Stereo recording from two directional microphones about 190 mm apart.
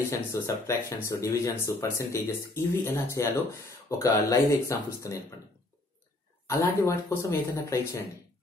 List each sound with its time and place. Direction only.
0.1 s speech: 15° left (ahead or behind)
6.5 s speech: 15° left (ahead or behind)